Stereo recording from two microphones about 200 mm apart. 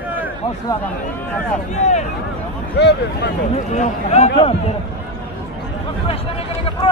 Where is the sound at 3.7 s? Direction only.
35° left (ahead or behind).